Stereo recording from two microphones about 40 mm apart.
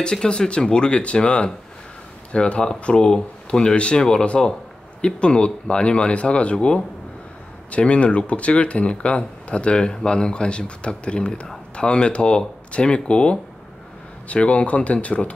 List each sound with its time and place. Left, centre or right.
0.0 s speech: left